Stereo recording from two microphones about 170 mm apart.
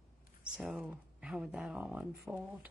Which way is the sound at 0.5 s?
5° right (ahead or behind).